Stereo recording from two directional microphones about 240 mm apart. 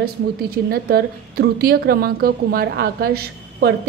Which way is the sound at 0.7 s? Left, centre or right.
Right.